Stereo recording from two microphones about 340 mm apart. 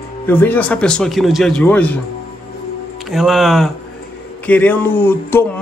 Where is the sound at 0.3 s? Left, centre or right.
Centre.